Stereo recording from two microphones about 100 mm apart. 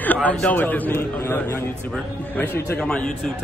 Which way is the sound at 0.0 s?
15° left (ahead or behind).